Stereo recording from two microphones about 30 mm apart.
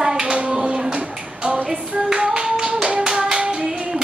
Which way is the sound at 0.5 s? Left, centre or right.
Right.